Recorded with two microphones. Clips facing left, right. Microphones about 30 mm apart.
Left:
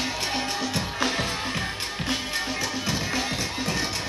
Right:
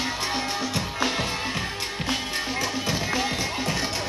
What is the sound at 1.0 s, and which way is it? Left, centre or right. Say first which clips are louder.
Music: even; centre.